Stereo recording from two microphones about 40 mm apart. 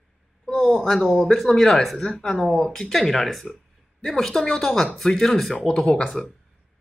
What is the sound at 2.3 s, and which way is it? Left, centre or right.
Speech, centre.